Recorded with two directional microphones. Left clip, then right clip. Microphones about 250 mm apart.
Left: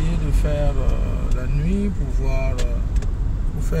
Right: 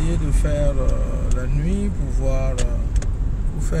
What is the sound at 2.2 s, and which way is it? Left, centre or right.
Speech, centre.